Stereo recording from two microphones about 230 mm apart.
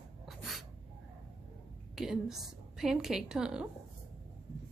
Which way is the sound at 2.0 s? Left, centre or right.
Centre.